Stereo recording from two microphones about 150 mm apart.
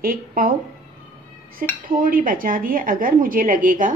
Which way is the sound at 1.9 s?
70° right (ahead or behind).